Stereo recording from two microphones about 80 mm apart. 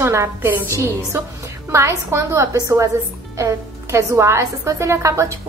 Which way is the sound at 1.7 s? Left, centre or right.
Right.